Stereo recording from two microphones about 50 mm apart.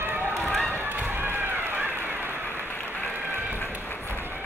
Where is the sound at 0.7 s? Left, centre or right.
Right.